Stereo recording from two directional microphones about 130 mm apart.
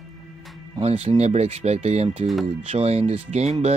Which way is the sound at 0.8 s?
55° right (ahead or behind).